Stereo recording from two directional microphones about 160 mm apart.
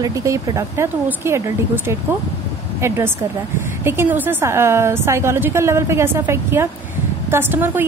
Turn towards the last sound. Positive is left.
turn(degrees=-15)  # may be behind; listen again after turning